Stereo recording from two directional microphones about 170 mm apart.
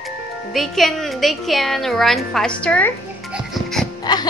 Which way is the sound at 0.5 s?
Centre (ahead or behind).